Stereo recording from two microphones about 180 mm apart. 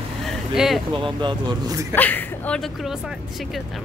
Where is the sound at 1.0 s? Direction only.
25° right (ahead or behind).